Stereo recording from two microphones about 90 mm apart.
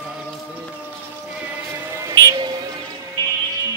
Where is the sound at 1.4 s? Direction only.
30° right (ahead or behind).